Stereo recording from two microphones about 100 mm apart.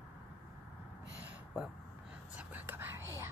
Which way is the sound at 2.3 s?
20° right (ahead or behind).